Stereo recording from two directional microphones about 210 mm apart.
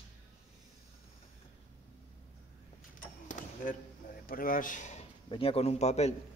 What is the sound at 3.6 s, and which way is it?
A man's voice, 40° left (ahead or behind).